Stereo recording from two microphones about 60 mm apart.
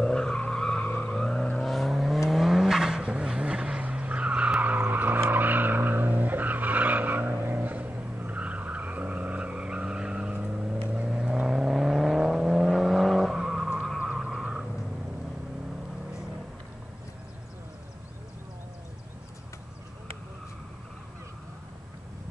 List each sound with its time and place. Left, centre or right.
0.0 s vehicle: centre
1.1 s vehicle: centre